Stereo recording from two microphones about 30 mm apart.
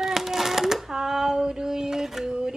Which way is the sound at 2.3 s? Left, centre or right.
Right.